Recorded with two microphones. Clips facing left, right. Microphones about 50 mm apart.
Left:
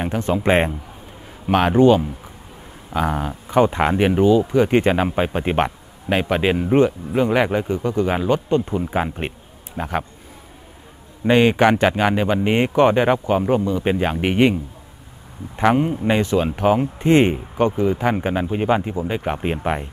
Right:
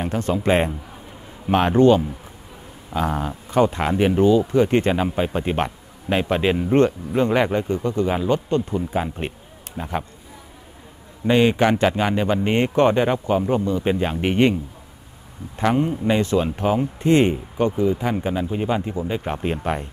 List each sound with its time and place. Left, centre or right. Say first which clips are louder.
0.0 s speech: left 2 dB; left
1.5 s speech: left 1 dB; centre
11.2 s speech: left 2 dB; left